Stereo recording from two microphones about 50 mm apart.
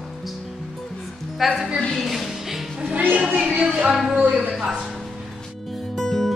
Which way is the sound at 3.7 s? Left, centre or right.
Centre.